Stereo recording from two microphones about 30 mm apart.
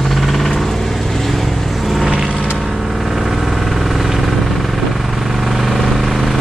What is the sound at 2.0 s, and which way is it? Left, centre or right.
Vehicle, right.